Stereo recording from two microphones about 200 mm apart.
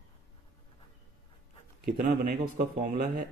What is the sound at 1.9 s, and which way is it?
A man's voice, 45° right (ahead or behind).